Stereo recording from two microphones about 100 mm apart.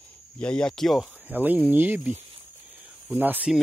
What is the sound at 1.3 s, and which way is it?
Speech, 20° right (ahead or behind).